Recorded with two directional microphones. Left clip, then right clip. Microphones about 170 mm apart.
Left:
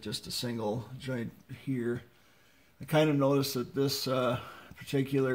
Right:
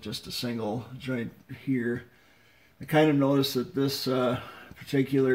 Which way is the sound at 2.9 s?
15° left (ahead or behind).